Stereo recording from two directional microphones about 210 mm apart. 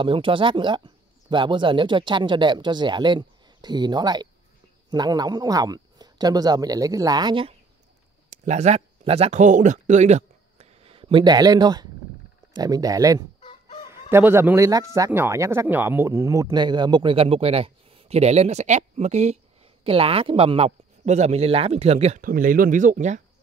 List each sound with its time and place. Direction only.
0.0 s speech: 25° right (ahead or behind)
8.3 s speech: 35° right (ahead or behind); by 13.2 s 15° right (ahead or behind)
13.4 s chicken: 30° left (ahead or behind)
14.1 s speech: 10° right (ahead or behind); by 23.2 s 35° right (ahead or behind)